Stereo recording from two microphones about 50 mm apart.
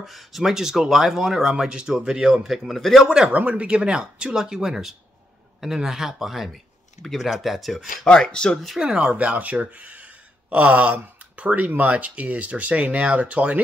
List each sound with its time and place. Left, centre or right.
0.0 s speech: centre
3.3 s speech: right; by 8.1 s centre
8.1 s speech: centre
8.8 s speech: centre